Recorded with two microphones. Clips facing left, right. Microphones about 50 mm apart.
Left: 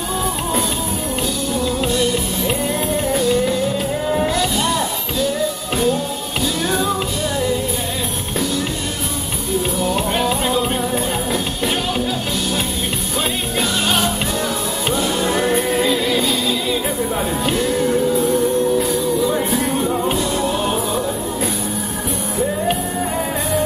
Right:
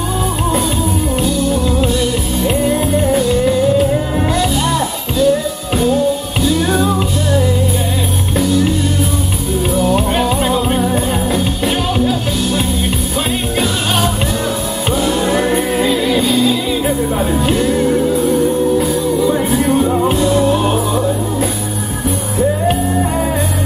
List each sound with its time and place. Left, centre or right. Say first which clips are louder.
1.2 s music: right 5 dB; centre
6.4 s music: right 6 dB; centre
9.8 s music: right 7 dB; centre
14.9 s music: right 4 dB; centre